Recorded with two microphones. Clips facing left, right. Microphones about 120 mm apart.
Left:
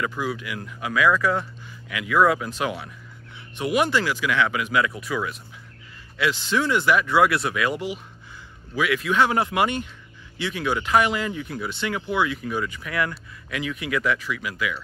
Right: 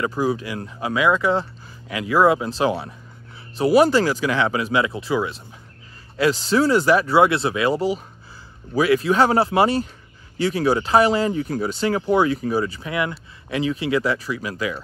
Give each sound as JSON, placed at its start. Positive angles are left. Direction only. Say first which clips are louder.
{"t": 0.0, "sound": "speech", "louder": "right 5 dB", "side_deg": -35}
{"t": 6.1, "sound": "speech", "louder": "right 5 dB", "side_deg": -40}
{"t": 12.9, "sound": "speech", "louder": "right 1 dB", "side_deg": -20}